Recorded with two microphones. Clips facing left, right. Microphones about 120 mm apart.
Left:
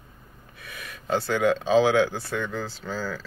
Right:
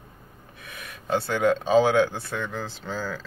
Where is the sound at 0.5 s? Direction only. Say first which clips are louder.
Left 1 dB; 20° right (ahead or behind).